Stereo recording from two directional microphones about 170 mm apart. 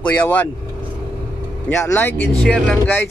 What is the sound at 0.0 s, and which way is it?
Speech, 10° left (ahead or behind).